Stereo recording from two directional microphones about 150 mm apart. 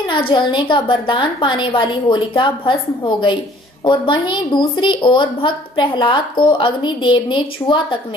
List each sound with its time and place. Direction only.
0.3 s a woman's voice: 30° left (ahead or behind)
3.8 s a woman's voice: 30° left (ahead or behind)